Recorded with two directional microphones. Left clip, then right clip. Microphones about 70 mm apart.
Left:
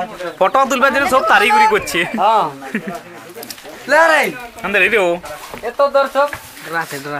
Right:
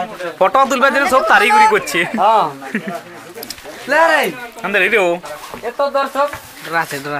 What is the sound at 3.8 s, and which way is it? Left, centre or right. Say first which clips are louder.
Speech: left 1 dB; left.